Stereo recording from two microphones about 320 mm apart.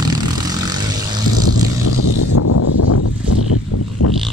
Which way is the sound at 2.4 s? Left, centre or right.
Left.